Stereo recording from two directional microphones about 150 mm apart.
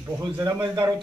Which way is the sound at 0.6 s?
25° right (ahead or behind).